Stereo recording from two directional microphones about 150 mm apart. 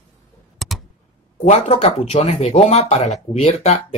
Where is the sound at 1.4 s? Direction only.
40° left (ahead or behind).